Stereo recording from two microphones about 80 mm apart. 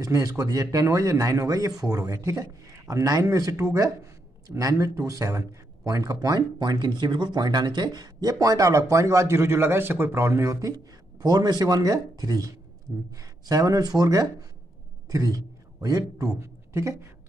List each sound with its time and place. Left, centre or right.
0.0 s speech: right
11.2 s a man's voice: right